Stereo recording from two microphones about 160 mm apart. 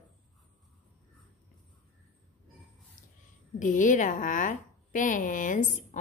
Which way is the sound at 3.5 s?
55° left (ahead or behind).